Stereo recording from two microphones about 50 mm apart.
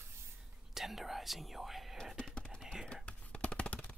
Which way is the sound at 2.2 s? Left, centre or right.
Centre.